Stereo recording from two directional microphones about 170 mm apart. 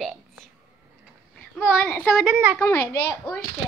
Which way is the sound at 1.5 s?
10° left (ahead or behind).